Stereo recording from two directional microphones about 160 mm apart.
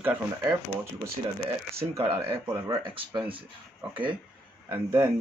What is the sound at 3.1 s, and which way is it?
Speech, 30° right (ahead or behind).